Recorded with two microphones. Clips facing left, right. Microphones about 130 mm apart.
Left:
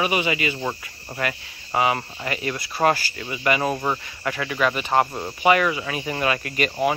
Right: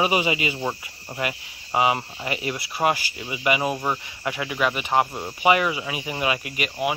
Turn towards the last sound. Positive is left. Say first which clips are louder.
# left 2 dB
turn(degrees=-15)  # may be behind; listen again after turning